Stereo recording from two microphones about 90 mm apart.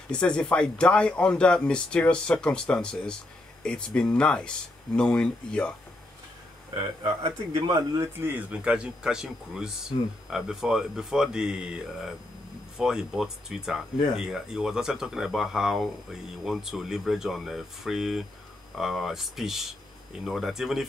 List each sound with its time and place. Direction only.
0.1 s speech: 10° left (ahead or behind)
7.7 s speech: 45° right (ahead or behind)
8.2 s speech: 15° right (ahead or behind)